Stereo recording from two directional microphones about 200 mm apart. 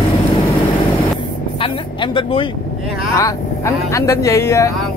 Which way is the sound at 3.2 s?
15° left (ahead or behind).